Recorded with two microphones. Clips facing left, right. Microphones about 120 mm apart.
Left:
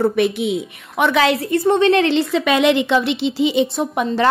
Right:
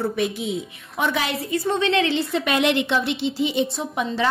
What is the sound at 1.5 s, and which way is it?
A woman's voice, 55° left (ahead or behind).